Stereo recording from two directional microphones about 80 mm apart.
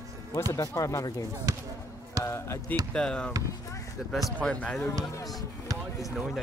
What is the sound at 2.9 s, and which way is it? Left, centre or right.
Speech, centre.